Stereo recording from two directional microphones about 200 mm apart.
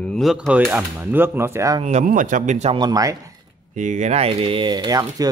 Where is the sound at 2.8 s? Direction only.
20° right (ahead or behind).